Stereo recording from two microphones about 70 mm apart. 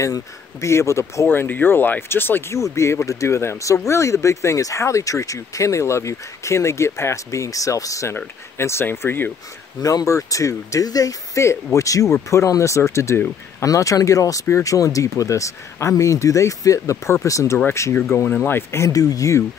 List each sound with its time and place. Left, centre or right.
0.0 s speech: left
1.3 s speech: left
2.5 s speech: left
8.5 s speech: left
9.8 s speech: left
10.0 s speech: left
11.3 s speech: left
18.3 s speech: left
18.7 s speech: left